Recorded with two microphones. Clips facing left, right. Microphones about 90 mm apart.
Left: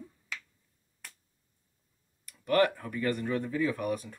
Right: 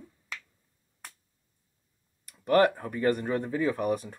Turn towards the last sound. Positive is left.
turn(degrees=-40)  # may be behind; listen again after turning